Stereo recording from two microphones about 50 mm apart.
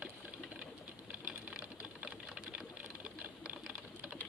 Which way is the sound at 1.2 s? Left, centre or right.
Right.